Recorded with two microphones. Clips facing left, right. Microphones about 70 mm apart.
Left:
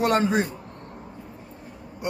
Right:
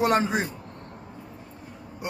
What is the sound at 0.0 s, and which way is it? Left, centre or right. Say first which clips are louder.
Speech: left 1 dB; centre.